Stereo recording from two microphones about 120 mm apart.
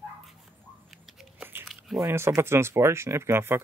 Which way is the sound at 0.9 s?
Centre (ahead or behind).